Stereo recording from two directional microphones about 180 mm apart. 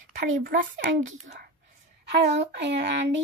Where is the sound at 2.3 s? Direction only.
75° right (ahead or behind).